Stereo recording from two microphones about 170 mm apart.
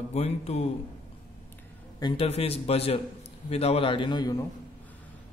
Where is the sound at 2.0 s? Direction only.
25° left (ahead or behind).